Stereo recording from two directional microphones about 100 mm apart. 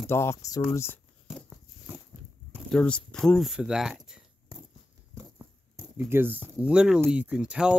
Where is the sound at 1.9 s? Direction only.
15° right (ahead or behind).